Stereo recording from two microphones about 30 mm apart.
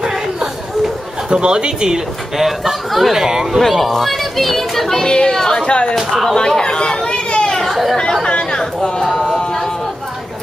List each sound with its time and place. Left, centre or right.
1.3 s speech: right
2.3 s speech: centre
3.2 s speech: centre
3.5 s speech: centre
4.9 s speech: left
5.7 s speech: left
5.9 s speech: centre
6.3 s speech: left
7.2 s chatter: left
7.5 s chatter: centre
8.2 s speech: left
9.0 s a sound: centre